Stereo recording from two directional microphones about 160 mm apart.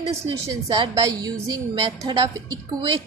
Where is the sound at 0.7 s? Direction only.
25° right (ahead or behind).